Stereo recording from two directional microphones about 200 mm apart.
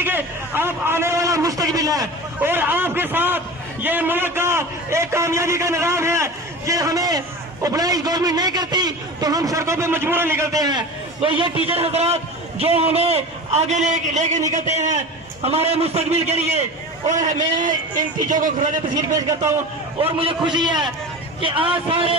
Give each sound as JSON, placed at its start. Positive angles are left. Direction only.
{"t": 0.0, "sound": "a man's voice", "side_deg": -10}
{"t": 17.9, "sound": "a man's voice", "side_deg": -40}
{"t": 19.1, "sound": "a man's voice", "side_deg": -15}
{"t": 20.0, "sound": "a man's voice", "side_deg": -30}